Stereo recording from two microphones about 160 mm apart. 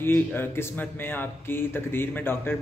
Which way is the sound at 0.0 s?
15° left (ahead or behind).